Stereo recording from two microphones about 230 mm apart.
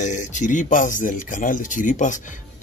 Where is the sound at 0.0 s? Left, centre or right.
Left.